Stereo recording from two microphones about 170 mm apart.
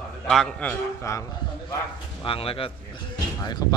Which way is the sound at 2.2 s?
30° left (ahead or behind).